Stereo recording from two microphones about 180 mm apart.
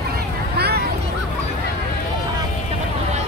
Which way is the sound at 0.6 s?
60° right (ahead or behind).